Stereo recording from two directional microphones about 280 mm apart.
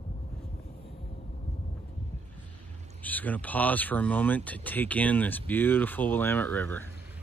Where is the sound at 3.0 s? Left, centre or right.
Centre.